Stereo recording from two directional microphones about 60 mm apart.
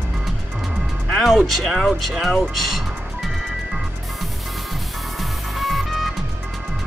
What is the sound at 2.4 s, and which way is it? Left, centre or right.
Music, centre.